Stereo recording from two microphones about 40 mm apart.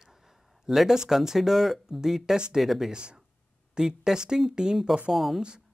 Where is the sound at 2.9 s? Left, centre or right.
Right.